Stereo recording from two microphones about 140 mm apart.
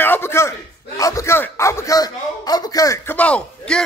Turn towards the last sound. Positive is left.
turn(degrees=5)  # may be behind; listen again after turning